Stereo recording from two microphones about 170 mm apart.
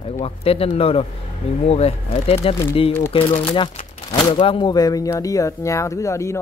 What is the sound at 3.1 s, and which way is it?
Speech, 35° left (ahead or behind).